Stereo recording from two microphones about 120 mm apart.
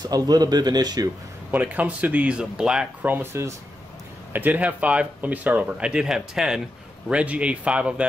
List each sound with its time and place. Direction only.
0.0 s speech: 35° right (ahead or behind)
1.5 s speech: 15° right (ahead or behind)